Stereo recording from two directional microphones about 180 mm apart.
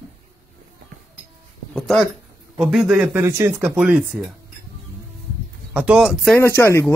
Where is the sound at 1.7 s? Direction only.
5° left (ahead or behind).